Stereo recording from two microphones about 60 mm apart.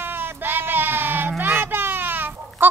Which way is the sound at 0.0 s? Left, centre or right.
Right.